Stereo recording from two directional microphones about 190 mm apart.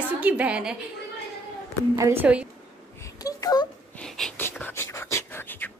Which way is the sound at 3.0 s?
15° left (ahead or behind).